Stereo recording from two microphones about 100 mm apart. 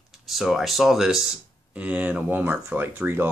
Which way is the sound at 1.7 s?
15° right (ahead or behind).